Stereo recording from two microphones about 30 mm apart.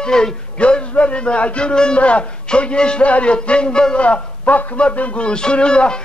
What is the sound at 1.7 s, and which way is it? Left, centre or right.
Speech, left.